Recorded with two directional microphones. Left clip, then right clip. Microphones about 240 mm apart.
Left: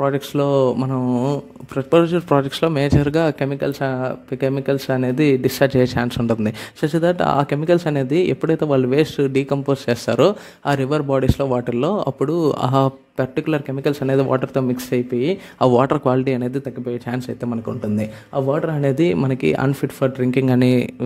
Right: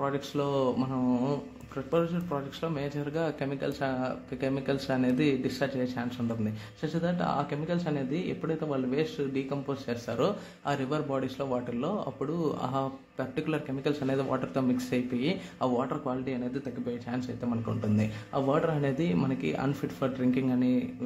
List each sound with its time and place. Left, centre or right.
0.0 s a man's voice: left
17.9 s a man's voice: left